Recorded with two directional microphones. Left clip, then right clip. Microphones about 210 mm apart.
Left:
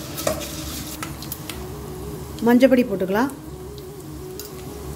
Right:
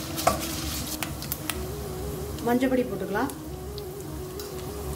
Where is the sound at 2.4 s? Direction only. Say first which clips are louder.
Left 9 dB; 45° left (ahead or behind).